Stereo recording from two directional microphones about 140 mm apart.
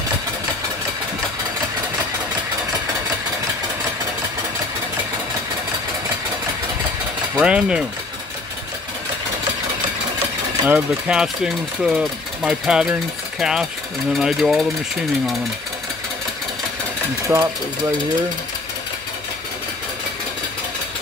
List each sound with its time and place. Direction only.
7.3 s speech: 10° right (ahead or behind)
10.7 s speech: 5° right (ahead or behind)
17.3 s speech: 20° right (ahead or behind)